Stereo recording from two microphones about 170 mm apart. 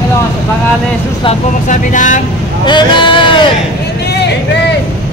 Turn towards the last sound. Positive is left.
turn(degrees=30)  # may be behind; listen again after turning